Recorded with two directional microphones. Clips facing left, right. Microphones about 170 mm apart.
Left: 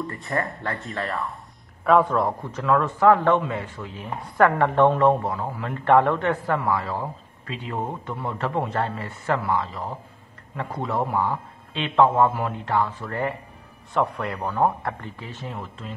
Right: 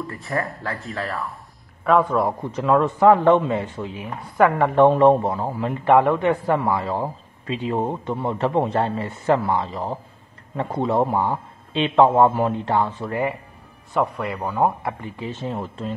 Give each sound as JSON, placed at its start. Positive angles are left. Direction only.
{"t": 0.0, "sound": "speech", "side_deg": 0}
{"t": 2.5, "sound": "speech", "side_deg": -20}
{"t": 4.0, "sound": "a woman's voice", "side_deg": -5}
{"t": 5.9, "sound": "a man's voice", "side_deg": -10}
{"t": 13.1, "sound": "a woman's voice", "side_deg": -10}
{"t": 15.4, "sound": "speech", "side_deg": -35}